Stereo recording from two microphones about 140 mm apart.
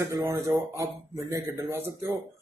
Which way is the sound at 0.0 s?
25° right (ahead or behind).